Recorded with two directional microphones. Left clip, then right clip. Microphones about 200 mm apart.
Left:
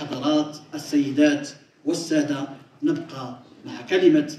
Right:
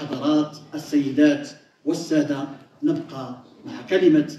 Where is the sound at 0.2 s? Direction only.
15° left (ahead or behind).